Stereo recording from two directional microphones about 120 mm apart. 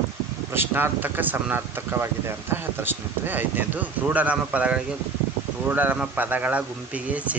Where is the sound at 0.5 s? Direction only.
20° right (ahead or behind).